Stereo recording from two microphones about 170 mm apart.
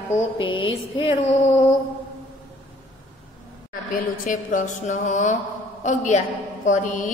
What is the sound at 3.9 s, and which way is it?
A woman's voice, 50° left (ahead or behind).